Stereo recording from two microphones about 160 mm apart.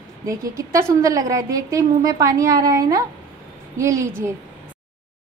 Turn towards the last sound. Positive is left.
turn(degrees=-20)  # may be behind; listen again after turning